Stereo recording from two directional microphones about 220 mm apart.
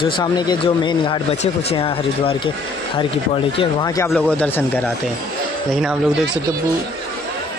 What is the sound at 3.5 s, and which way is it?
Speech, 15° left (ahead or behind).